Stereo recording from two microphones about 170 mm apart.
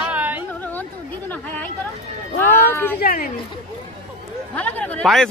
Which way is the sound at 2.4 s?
15° left (ahead or behind).